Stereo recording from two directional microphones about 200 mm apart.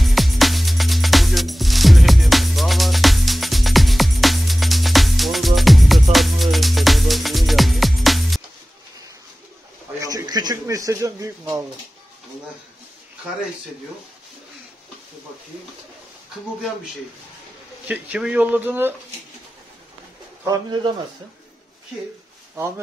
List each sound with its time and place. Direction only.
0.0 s music: centre (ahead or behind)
9.9 s a sound: 20° right (ahead or behind)
17.8 s speech: 5° right (ahead or behind)
20.4 s speech: 20° right (ahead or behind)